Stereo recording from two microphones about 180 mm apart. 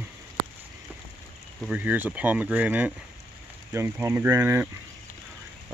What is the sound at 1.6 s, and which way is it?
Speech, 10° right (ahead or behind).